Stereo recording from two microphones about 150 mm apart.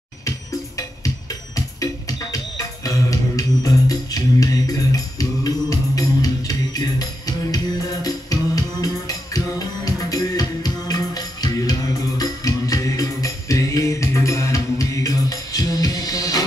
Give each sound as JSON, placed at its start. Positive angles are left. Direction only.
{"t": 0.2, "sound": "music", "side_deg": 20}